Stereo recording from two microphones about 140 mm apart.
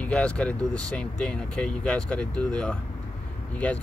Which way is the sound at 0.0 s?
5° left (ahead or behind).